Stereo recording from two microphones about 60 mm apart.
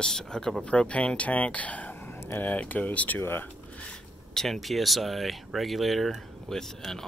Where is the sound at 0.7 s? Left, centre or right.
Centre.